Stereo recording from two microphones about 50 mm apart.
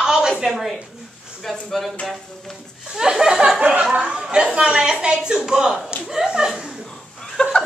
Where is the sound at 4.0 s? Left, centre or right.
Centre.